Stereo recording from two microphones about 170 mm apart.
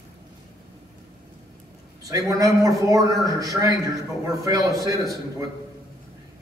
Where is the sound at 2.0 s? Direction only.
20° right (ahead or behind).